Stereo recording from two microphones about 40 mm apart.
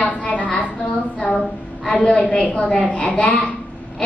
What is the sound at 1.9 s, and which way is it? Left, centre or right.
A woman's voice, left.